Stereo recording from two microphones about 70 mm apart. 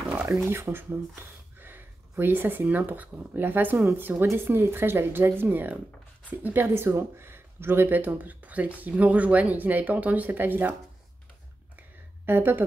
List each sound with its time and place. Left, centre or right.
0.3 s speech: right
12.3 s speech: right